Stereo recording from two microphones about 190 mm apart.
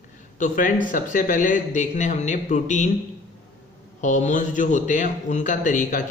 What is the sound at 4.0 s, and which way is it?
A man's voice, 40° left (ahead or behind).